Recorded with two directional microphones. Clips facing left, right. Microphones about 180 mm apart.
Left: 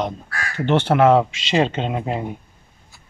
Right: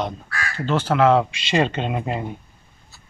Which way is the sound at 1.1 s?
5° left (ahead or behind).